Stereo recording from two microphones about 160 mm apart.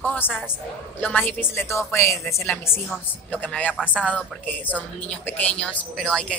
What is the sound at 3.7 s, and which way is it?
Speech, 5° right (ahead or behind).